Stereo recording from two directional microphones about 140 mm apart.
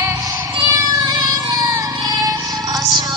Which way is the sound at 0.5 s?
25° right (ahead or behind).